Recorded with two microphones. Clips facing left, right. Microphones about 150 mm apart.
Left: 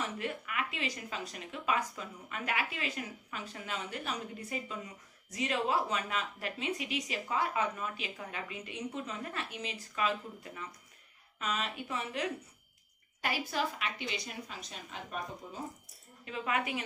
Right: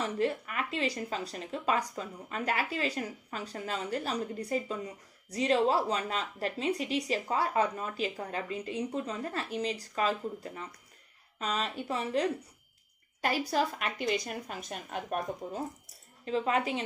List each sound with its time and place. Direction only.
0.2 s a woman's voice: 35° right (ahead or behind); by 15.6 s 55° right (ahead or behind)
16.3 s speech: 30° right (ahead or behind)